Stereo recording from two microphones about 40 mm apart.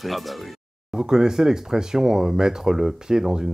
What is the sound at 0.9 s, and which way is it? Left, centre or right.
Speech, centre.